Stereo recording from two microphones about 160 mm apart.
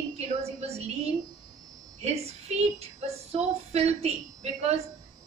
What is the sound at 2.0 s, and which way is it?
A woman's voice, 40° right (ahead or behind).